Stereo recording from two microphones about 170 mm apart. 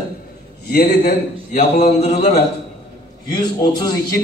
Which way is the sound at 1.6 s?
40° left (ahead or behind).